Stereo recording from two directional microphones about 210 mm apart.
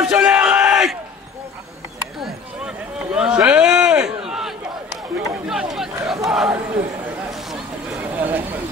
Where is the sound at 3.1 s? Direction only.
5° right (ahead or behind).